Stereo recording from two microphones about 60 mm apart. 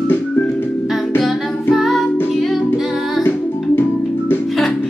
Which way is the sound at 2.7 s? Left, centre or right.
Centre.